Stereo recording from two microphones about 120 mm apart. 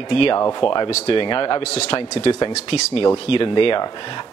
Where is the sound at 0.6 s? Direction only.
45° left (ahead or behind).